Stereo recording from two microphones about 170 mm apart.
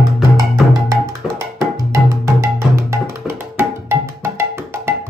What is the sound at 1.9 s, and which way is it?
Music, 15° right (ahead or behind).